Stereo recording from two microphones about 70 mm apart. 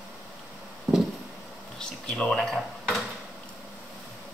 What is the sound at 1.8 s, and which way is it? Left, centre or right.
Drawer open or close, centre.